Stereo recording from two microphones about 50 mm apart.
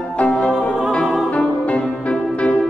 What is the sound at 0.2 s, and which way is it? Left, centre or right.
Music, left.